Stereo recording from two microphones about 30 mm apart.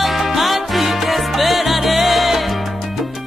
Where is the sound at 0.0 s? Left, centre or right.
Centre.